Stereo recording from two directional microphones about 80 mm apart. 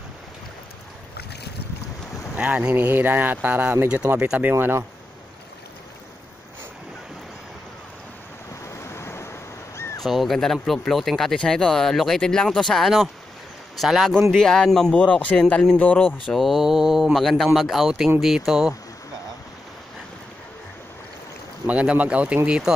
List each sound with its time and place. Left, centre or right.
2.3 s speech: centre
2.7 s speech: right
8.6 s waves: left
10.0 s speech: centre
15.0 s speech: centre
15.8 s speech: left
16.3 s speech: centre
21.6 s speech: centre